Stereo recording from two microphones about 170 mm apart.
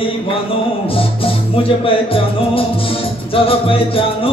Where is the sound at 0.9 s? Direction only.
30° left (ahead or behind).